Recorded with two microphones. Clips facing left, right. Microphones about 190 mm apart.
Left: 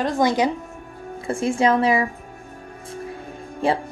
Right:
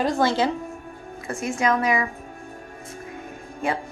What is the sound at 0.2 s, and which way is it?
Speech, 15° left (ahead or behind).